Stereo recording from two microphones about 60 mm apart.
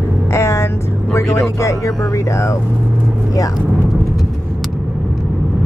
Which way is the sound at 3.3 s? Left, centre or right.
Left.